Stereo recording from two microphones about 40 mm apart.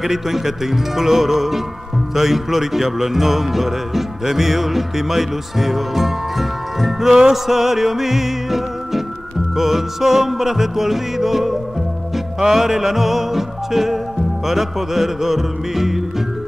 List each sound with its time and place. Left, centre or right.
0.0 s music: centre